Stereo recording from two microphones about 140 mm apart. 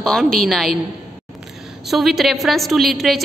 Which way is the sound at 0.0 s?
5° left (ahead or behind).